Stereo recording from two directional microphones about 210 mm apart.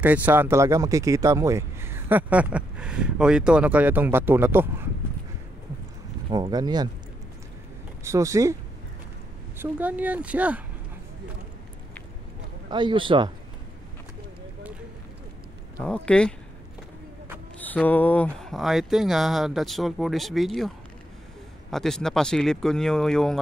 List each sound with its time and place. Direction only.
0.0 s speech: 10° right (ahead or behind)
6.3 s a man's voice: 20° right (ahead or behind)
8.0 s speech: 15° right (ahead or behind)
9.6 s speech: 5° right (ahead or behind)
12.6 s a man's voice: 20° right (ahead or behind)
15.8 s speech: 5° left (ahead or behind)
17.6 s speech: 10° left (ahead or behind)